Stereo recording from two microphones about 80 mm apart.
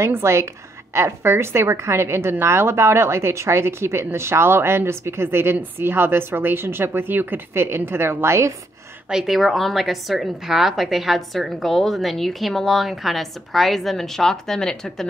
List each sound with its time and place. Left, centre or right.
0.0 s a woman's voice: right
9.1 s a woman's voice: centre